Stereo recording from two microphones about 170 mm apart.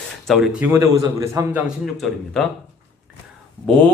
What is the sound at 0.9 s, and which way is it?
Speech, 20° right (ahead or behind).